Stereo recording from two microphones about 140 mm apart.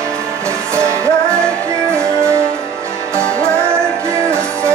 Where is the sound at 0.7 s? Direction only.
20° right (ahead or behind).